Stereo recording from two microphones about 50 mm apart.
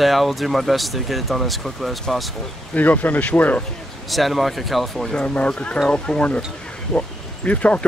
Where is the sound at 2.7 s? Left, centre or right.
Left.